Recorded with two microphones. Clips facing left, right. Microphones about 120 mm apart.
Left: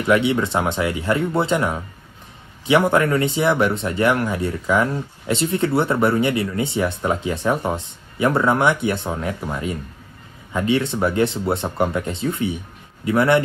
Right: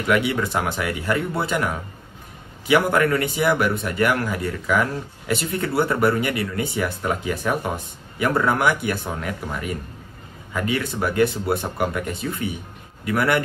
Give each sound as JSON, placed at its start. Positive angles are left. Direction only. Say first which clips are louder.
{"t": 0.0, "sound": "a man's voice", "louder": "left 3 dB", "side_deg": 25}